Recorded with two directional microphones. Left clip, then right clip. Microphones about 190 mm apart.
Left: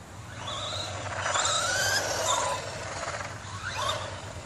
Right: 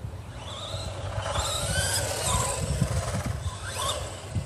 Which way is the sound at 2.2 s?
45° right (ahead or behind).